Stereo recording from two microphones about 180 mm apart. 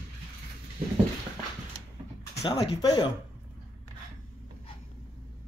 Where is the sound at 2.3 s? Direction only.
20° left (ahead or behind).